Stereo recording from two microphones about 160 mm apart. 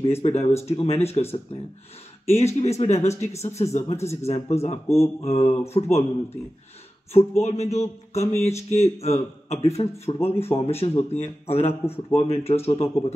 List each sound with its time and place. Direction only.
0.0 s speech: 40° left (ahead or behind)
2.3 s speech: 40° left (ahead or behind)
4.8 s mantra: 15° left (ahead or behind)
5.2 s speech: 40° left (ahead or behind)
7.4 s speech: 45° left (ahead or behind)